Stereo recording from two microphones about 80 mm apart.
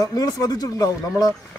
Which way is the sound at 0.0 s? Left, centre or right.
Left.